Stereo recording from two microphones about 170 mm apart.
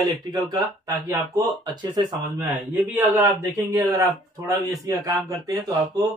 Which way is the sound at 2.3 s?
10° right (ahead or behind).